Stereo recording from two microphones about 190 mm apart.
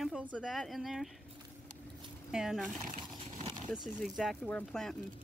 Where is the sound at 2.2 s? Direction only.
5° right (ahead or behind).